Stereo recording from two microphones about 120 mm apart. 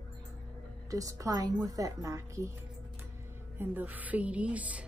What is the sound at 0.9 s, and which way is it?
A woman's voice, 30° right (ahead or behind).